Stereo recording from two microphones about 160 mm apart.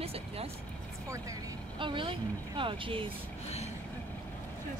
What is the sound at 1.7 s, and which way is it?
Speech, 30° right (ahead or behind).